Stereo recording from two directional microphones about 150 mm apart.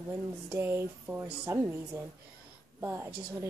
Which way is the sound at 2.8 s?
15° right (ahead or behind).